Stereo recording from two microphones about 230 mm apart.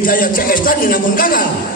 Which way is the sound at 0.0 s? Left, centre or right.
Left.